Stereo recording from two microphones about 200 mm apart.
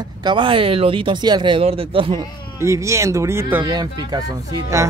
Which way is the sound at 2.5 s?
15° right (ahead or behind).